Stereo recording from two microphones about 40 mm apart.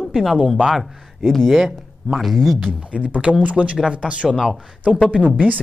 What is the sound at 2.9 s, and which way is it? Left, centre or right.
Speech, right.